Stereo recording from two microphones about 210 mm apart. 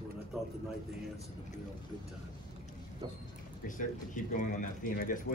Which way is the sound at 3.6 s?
40° left (ahead or behind).